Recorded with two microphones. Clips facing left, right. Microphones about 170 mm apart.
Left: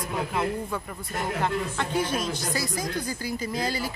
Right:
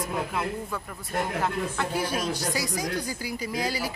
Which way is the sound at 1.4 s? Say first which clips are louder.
Left 1 dB; 5° right (ahead or behind).